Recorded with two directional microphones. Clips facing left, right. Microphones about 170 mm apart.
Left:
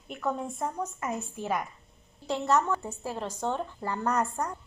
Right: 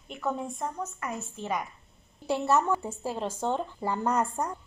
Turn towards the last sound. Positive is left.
turn(degrees=-10)  # may be behind; listen again after turning